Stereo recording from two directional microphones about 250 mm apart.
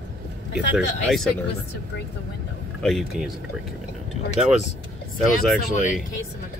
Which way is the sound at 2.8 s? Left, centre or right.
Centre.